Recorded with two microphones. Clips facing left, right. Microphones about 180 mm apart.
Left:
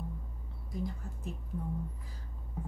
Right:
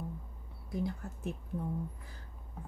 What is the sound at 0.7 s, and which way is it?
Speech, 65° right (ahead or behind).